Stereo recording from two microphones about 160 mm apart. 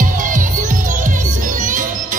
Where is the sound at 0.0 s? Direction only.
55° right (ahead or behind).